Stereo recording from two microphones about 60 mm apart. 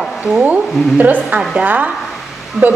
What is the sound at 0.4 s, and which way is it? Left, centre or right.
A woman's voice, right.